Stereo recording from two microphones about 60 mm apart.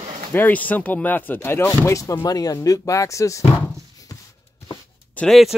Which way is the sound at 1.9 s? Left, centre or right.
Left.